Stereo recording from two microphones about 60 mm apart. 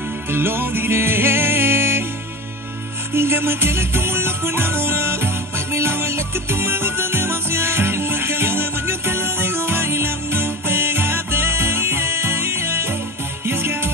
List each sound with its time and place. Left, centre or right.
0.3 s music: right
3.2 s music: right